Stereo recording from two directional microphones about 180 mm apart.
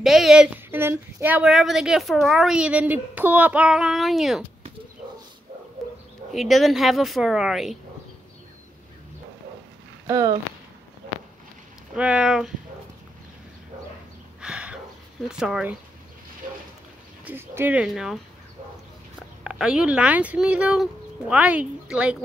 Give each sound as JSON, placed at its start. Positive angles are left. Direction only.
{"t": 0.0, "sound": "speech", "side_deg": 0}
{"t": 6.3, "sound": "speech", "side_deg": 0}
{"t": 10.0, "sound": "speech", "side_deg": -20}
{"t": 11.9, "sound": "speech", "side_deg": -5}
{"t": 14.4, "sound": "a sound", "side_deg": -5}
{"t": 15.2, "sound": "speech", "side_deg": -5}
{"t": 17.2, "sound": "speech", "side_deg": -10}
{"t": 19.4, "sound": "speech", "side_deg": -5}